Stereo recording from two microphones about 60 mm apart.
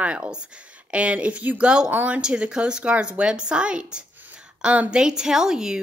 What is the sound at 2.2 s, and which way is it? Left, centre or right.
A woman's voice, centre.